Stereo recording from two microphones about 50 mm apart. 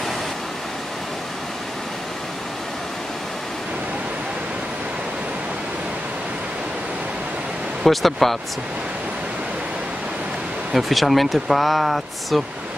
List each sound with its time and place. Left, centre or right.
7.8 s speech: centre
10.7 s speech: centre